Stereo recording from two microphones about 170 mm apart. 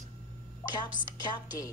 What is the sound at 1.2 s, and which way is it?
Music, 25° left (ahead or behind).